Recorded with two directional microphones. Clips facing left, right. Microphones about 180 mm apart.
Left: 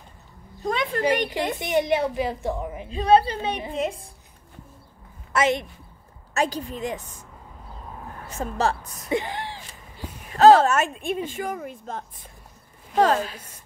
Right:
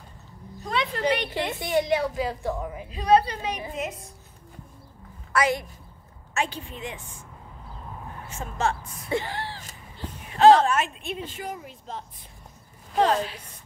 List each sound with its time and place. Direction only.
0.7 s speech: 45° left (ahead or behind)
1.6 s a child's voice: 20° left (ahead or behind)
5.3 s a woman's voice: 25° left (ahead or behind)
6.3 s a woman's voice: 40° left (ahead or behind)
8.3 s a woman's voice: 35° left (ahead or behind)
9.1 s a sound: 20° left (ahead or behind)
10.3 s speech: 40° left (ahead or behind)